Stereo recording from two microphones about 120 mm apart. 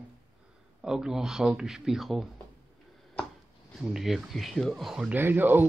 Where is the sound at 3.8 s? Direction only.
5° right (ahead or behind).